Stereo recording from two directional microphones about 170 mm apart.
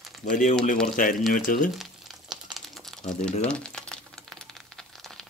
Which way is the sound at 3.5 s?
5° left (ahead or behind).